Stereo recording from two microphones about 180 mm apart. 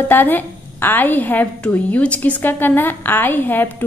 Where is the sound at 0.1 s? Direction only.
10° left (ahead or behind).